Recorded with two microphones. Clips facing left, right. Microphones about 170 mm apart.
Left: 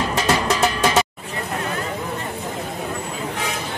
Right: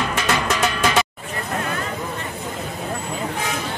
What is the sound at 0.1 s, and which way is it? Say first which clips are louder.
Music: left 2 dB; 35° left (ahead or behind).